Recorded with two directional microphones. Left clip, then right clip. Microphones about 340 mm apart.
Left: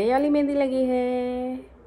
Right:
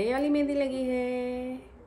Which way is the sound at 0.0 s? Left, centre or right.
Centre.